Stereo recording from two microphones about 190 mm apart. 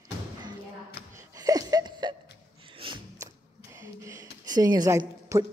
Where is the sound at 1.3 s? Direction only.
20° right (ahead or behind).